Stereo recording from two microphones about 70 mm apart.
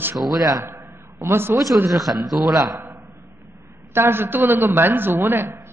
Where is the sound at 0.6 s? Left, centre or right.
Right.